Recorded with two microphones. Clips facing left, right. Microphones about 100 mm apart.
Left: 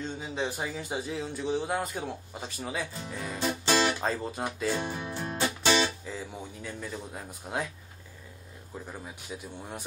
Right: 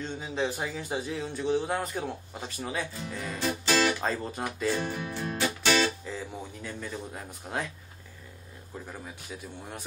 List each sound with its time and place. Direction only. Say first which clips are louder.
0.0 s speech: right 2 dB; 5° left (ahead or behind)
3.6 s music: even; 15° left (ahead or behind)
4.0 s speech: even; 5° left (ahead or behind)
4.6 s music: right 3 dB; 15° left (ahead or behind)
6.6 s speech: even; 5° left (ahead or behind)
9.3 s speech: left 2 dB; 10° left (ahead or behind)